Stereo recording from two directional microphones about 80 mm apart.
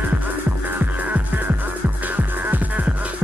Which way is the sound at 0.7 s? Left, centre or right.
Centre.